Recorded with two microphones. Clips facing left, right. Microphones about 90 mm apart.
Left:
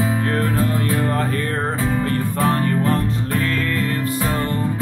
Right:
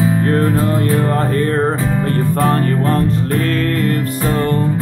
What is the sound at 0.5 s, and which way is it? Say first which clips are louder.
Music: right 4 dB; 45° right (ahead or behind).